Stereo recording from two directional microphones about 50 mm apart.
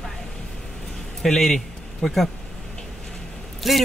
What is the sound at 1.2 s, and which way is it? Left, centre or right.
A man's voice, centre.